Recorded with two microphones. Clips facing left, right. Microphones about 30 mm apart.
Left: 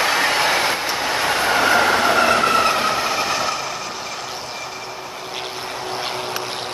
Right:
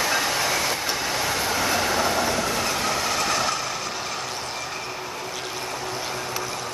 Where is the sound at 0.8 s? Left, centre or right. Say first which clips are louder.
Left 5 dB; left.